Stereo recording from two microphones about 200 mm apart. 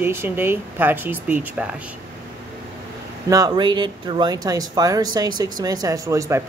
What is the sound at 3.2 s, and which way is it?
Speech, 15° right (ahead or behind).